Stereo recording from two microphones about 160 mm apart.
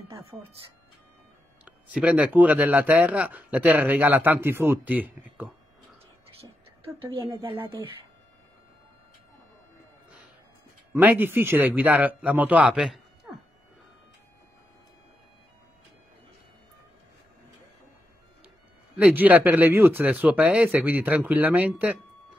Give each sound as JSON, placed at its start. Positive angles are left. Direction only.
{"t": 0.3, "sound": "speech", "side_deg": -15}
{"t": 1.6, "sound": "speech", "side_deg": -10}
{"t": 6.8, "sound": "a woman's voice", "side_deg": -35}
{"t": 10.9, "sound": "speech", "side_deg": -10}
{"t": 18.9, "sound": "speech", "side_deg": -10}